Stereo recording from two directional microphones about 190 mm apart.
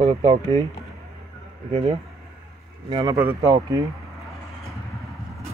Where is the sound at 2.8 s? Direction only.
20° right (ahead or behind).